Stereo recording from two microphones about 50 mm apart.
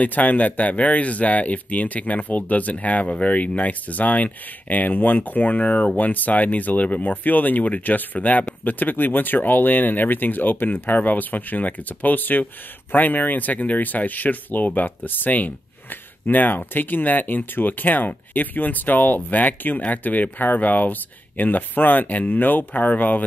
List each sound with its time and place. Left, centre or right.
0.0 s speech: left